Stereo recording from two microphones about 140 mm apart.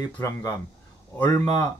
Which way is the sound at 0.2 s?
25° left (ahead or behind).